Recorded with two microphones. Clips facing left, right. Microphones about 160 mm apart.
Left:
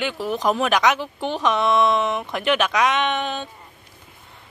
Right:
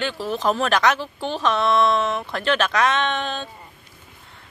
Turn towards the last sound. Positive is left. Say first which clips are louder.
# left 1 dB
turn(degrees=15)  # may be behind; listen again after turning